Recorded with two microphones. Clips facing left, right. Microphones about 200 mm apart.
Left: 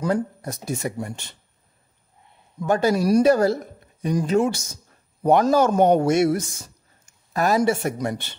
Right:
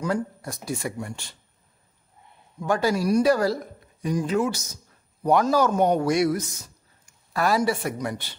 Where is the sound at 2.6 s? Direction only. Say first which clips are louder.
Left 3 dB; 20° left (ahead or behind).